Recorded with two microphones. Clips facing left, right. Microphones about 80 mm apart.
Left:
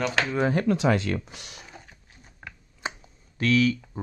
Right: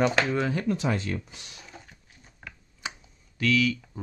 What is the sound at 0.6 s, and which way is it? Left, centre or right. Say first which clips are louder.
Speech: left 5 dB; left.